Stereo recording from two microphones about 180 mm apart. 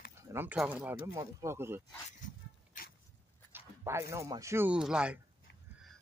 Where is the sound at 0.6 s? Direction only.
10° right (ahead or behind).